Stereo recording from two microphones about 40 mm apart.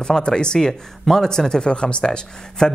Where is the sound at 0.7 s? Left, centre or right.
Centre.